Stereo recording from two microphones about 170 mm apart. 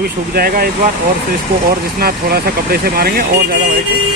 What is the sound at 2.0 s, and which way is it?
Speech, 65° right (ahead or behind).